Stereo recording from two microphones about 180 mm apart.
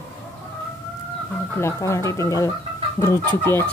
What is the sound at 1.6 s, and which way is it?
Speech, 15° left (ahead or behind).